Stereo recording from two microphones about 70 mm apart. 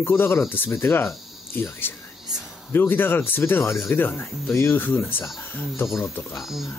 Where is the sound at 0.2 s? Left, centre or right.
Left.